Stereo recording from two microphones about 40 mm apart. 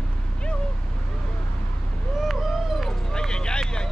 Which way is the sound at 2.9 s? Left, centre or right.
Centre.